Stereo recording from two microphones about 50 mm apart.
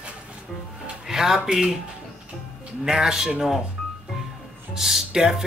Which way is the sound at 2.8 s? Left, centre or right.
Centre.